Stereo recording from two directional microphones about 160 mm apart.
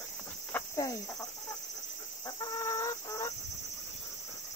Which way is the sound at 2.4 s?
20° left (ahead or behind).